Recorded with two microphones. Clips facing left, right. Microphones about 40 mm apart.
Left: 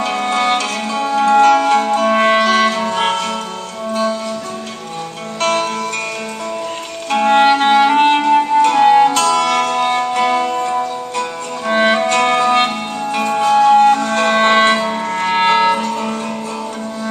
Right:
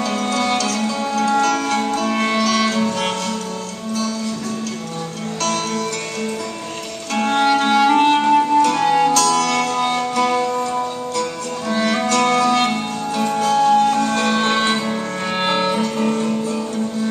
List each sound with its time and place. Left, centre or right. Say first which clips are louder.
0.0 s music: left 4 dB; left
5.4 s music: left 6 dB; left
7.2 s music: left 6 dB; left
7.4 s clarinet: left 4 dB; left
8.2 s music: left 2 dB; left
8.6 s music: left 5 dB; left